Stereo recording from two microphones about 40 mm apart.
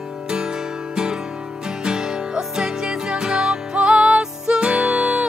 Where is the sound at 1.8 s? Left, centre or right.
Centre.